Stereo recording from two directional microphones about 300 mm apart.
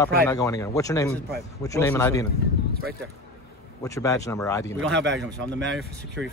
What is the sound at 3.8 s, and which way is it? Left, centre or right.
Speech, centre.